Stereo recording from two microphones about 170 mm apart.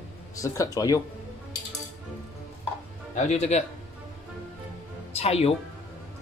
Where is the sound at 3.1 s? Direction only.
45° left (ahead or behind).